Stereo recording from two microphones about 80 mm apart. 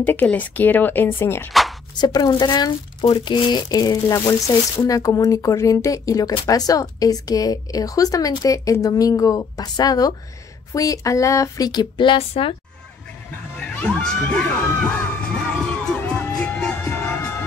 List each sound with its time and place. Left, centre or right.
0.0 s speech: left
1.5 s a sound: centre
2.0 s speech: left
3.6 s speech: left
13.6 s speech: centre
14.6 s crowd: left
16.1 s music: centre